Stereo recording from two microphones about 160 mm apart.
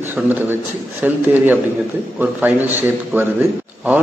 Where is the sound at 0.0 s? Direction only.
10° right (ahead or behind).